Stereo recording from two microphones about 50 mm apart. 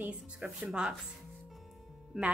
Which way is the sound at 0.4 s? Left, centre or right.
Right.